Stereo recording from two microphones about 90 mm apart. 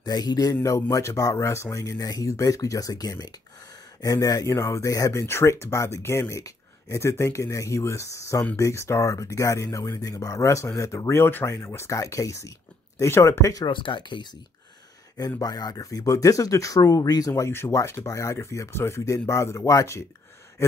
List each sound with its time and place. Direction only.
0.0 s speech: 50° left (ahead or behind)
0.6 s speech: 35° left (ahead or behind)
13.7 s speech: 65° left (ahead or behind)
15.1 s speech: 45° left (ahead or behind)
17.3 s speech: 30° left (ahead or behind)